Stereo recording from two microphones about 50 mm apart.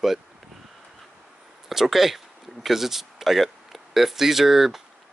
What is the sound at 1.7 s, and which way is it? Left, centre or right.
Speech, centre.